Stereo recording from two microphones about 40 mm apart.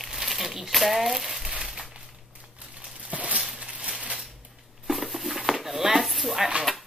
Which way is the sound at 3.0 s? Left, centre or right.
Right.